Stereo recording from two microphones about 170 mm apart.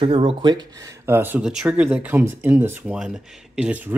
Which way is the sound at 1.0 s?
10° right (ahead or behind).